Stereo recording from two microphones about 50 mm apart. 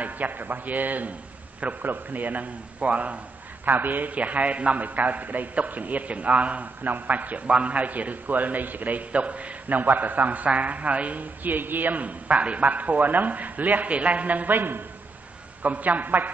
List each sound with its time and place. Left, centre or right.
0.0 s a man's voice: right
15.6 s a man's voice: right